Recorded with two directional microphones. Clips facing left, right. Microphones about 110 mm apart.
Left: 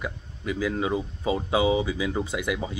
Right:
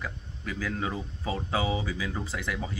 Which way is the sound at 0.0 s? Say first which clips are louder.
Left 5 dB; 15° left (ahead or behind).